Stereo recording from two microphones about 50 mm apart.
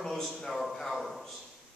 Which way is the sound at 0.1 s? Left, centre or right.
Centre.